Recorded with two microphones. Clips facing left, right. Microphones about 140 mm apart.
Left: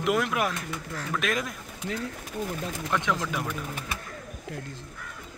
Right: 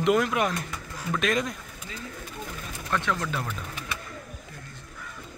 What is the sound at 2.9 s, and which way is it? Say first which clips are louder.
Speech: even; 15° left (ahead or behind).